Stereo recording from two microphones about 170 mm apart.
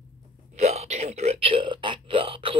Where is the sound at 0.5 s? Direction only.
40° right (ahead or behind).